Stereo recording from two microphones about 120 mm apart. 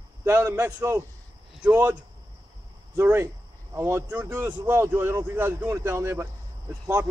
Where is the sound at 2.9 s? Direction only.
20° right (ahead or behind).